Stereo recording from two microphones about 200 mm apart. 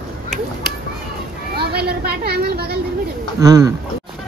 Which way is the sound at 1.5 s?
55° right (ahead or behind).